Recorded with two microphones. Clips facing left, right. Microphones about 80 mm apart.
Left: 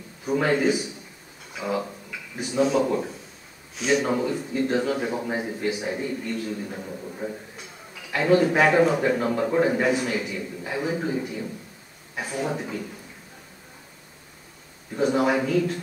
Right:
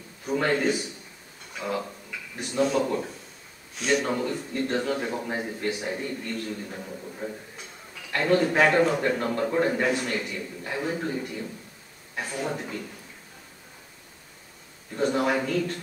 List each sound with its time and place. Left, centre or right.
0.2 s a man's voice: centre
14.9 s a man's voice: centre